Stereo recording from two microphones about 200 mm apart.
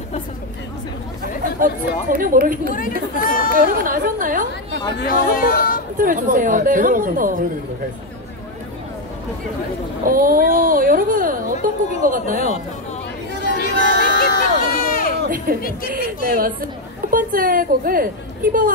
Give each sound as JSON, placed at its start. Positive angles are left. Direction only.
{"t": 1.6, "sound": "speech", "side_deg": -45}
{"t": 3.2, "sound": "speech", "side_deg": 45}
{"t": 3.6, "sound": "speech", "side_deg": -45}
{"t": 5.0, "sound": "speech", "side_deg": 45}
{"t": 5.9, "sound": "speech", "side_deg": -40}
{"t": 10.0, "sound": "speech", "side_deg": -45}
{"t": 13.6, "sound": "run", "side_deg": 50}
{"t": 15.2, "sound": "music", "side_deg": -45}
{"t": 15.9, "sound": "speech", "side_deg": -45}